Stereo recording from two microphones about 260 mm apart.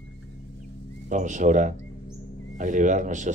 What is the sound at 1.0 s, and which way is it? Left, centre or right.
A man's voice, right.